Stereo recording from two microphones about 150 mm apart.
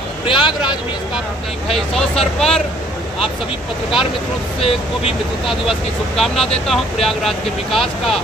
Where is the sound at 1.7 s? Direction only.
5° left (ahead or behind).